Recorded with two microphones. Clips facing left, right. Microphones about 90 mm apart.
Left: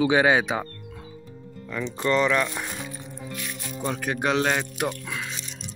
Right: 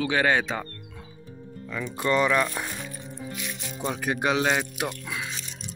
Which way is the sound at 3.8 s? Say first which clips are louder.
Even; 10° right (ahead or behind).